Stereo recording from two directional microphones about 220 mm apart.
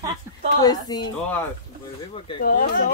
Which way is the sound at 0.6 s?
20° left (ahead or behind).